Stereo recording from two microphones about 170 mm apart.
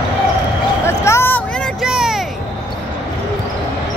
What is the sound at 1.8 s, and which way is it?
Vehicle, 5° right (ahead or behind).